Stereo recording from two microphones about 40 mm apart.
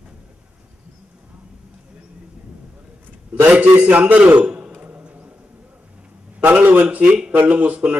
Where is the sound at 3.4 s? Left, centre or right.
Right.